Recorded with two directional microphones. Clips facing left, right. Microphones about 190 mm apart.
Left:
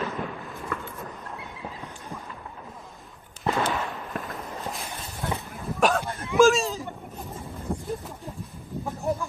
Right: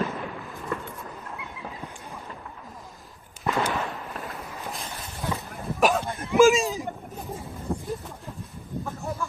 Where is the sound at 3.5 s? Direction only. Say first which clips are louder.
Even; 25° left (ahead or behind).